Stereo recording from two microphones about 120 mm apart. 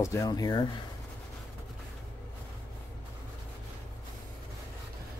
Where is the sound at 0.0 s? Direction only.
25° left (ahead or behind).